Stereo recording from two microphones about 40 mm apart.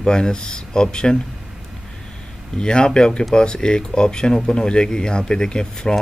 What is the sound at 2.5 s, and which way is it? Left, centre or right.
Speech, left.